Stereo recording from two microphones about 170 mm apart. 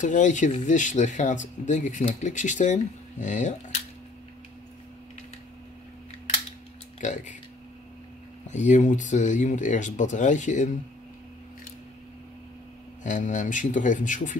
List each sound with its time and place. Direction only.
0.0 s speech: 45° left (ahead or behind)
7.0 s speech: 45° left (ahead or behind)
8.5 s speech: 45° left (ahead or behind)
13.0 s speech: 45° left (ahead or behind)